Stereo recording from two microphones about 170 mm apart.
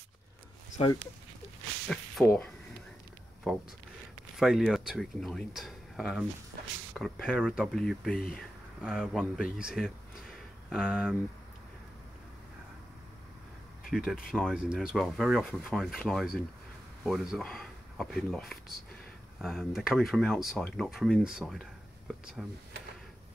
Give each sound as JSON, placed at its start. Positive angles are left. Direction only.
{"t": 0.7, "sound": "speech", "side_deg": 25}
{"t": 1.9, "sound": "speech", "side_deg": 0}
{"t": 13.8, "sound": "speech", "side_deg": 0}